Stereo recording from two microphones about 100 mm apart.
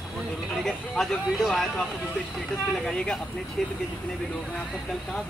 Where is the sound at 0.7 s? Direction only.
Centre (ahead or behind).